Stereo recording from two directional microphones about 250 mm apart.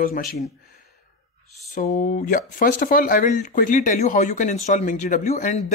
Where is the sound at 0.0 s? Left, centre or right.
Left.